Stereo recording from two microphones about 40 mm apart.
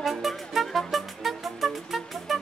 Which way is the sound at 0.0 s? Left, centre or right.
Centre.